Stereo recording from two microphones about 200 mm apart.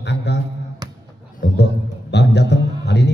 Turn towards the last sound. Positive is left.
turn(degrees=60)  # may be behind; listen again after turning